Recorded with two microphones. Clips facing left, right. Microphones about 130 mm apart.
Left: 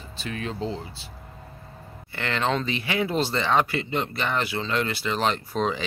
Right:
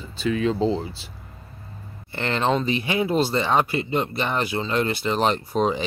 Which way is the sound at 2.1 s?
25° right (ahead or behind).